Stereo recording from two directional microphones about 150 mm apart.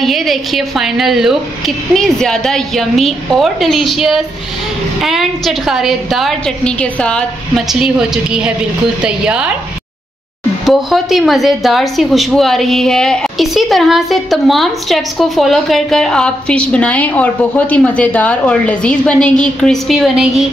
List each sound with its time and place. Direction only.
0.0 s a woman's voice: centre (ahead or behind)
10.6 s a woman's voice: centre (ahead or behind)